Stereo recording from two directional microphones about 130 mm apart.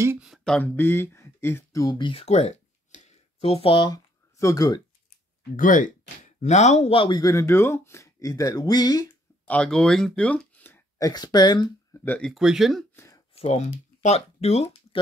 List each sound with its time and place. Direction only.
0.4 s speech: 10° left (ahead or behind); by 2.0 s 25° left (ahead or behind)
2.0 s speech: 40° left (ahead or behind)
2.2 s a sound: 55° left (ahead or behind); by 4.8 s 30° left (ahead or behind)
5.6 s speech: 85° left; by 7.1 s 50° left (ahead or behind)
7.1 s speech: 30° left (ahead or behind)
9.5 s speech: 5° left (ahead or behind)
11.0 s speech: 30° left (ahead or behind)
11.9 s speech: 15° left (ahead or behind)
12.3 s speech: 5° right (ahead or behind)
12.9 s a sound: 25° left (ahead or behind)
13.3 s speech: 55° left (ahead or behind)